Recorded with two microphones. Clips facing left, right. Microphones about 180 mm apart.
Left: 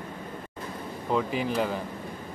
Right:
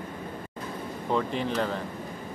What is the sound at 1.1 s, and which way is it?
Speech, 5° left (ahead or behind).